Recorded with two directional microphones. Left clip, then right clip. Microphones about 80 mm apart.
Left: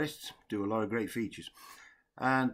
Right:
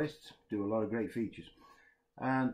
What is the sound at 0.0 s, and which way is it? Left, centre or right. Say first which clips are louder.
Speech: left 2 dB; left.